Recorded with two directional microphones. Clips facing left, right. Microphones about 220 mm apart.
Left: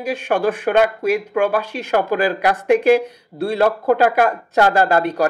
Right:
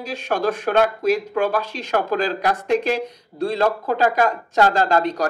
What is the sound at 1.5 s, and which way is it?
Speech, 60° left (ahead or behind).